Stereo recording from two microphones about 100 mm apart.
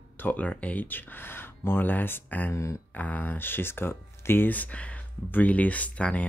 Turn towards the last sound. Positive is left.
turn(degrees=15)  # may be behind; listen again after turning